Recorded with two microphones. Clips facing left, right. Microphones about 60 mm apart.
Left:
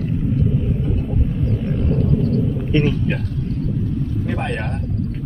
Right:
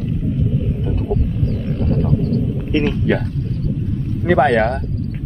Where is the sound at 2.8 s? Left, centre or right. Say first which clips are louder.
Right 3 dB; right.